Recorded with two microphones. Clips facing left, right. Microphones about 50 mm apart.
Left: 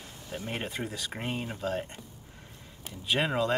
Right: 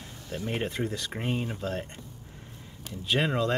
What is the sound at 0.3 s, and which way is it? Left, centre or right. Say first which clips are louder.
Speech: right 4 dB; centre.